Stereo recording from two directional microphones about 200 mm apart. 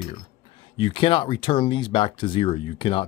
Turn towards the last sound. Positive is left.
turn(degrees=25)  # may be behind; listen again after turning